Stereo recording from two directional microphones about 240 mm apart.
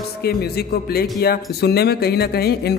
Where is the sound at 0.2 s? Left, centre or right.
Left.